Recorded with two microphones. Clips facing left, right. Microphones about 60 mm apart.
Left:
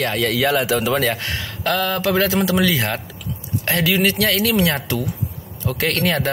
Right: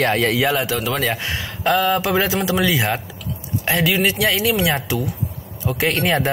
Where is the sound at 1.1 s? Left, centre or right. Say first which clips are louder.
Right 1 dB; centre.